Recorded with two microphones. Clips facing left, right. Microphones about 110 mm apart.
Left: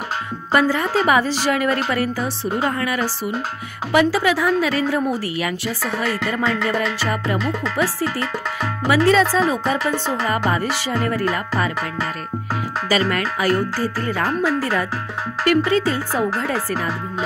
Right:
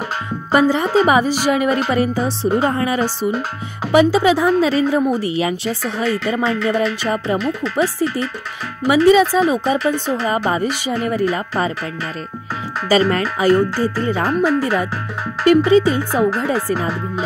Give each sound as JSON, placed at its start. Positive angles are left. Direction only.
{"t": 0.5, "sound": "a woman's voice", "side_deg": -20}
{"t": 9.1, "sound": "a woman's voice", "side_deg": -15}
{"t": 12.8, "sound": "a woman's voice", "side_deg": -30}